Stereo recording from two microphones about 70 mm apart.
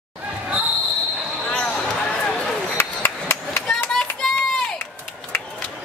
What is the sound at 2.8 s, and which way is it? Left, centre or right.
Hammer, left.